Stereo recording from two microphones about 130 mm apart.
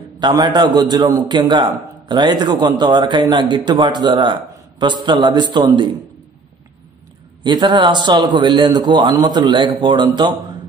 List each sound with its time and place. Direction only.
0.2 s a man's voice: 35° right (ahead or behind)
7.4 s a man's voice: 35° right (ahead or behind)